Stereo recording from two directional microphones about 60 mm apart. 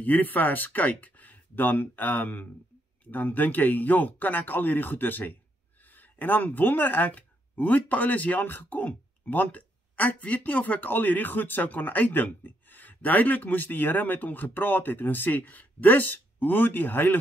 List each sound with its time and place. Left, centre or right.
0.0 s speech: left